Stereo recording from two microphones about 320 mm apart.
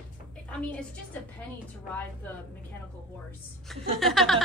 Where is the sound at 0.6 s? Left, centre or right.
Centre.